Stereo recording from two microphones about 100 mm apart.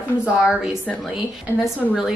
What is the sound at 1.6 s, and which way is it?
Speech, 5° right (ahead or behind).